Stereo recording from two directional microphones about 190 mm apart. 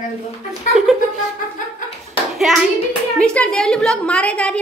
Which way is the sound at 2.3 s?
Centre (ahead or behind).